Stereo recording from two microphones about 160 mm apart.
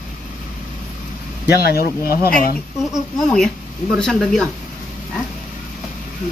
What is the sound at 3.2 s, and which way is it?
Speech, 5° left (ahead or behind).